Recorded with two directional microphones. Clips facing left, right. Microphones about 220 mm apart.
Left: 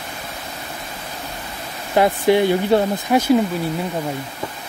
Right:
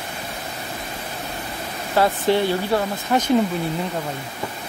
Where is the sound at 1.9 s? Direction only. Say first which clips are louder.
Left 3 dB; 15° left (ahead or behind).